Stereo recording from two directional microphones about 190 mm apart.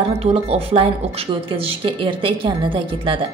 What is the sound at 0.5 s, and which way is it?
A woman's voice, 30° right (ahead or behind).